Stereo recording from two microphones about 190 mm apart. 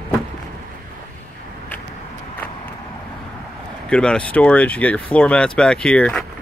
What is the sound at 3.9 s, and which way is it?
Speech, 5° left (ahead or behind).